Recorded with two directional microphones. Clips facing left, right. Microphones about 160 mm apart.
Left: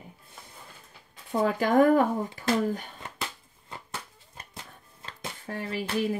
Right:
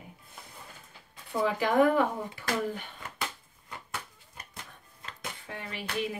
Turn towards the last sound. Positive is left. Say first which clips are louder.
# left 6 dB
turn(degrees=35)  # may be behind; listen again after turning